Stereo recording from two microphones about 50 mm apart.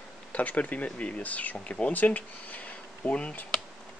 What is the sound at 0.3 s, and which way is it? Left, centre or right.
Speech, left.